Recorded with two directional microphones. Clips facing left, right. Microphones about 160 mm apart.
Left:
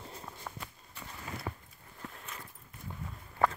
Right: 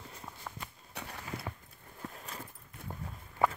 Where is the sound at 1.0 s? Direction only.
75° right (ahead or behind).